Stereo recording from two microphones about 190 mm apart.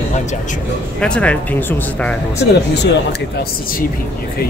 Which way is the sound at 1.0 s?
5° left (ahead or behind).